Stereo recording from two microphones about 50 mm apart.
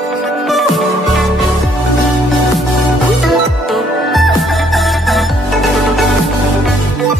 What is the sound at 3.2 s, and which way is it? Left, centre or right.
Music, centre.